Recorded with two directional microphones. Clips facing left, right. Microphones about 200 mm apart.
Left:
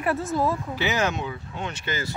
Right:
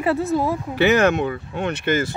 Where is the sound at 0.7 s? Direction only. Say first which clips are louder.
Right 9 dB; 60° right (ahead or behind).